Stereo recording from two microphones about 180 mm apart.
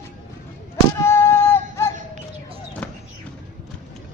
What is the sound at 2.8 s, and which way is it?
Music, 5° left (ahead or behind).